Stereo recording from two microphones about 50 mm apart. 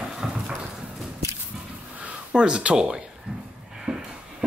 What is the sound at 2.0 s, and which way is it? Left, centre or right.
Speech, right.